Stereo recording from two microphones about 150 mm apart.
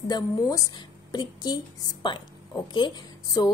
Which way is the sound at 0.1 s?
25° left (ahead or behind).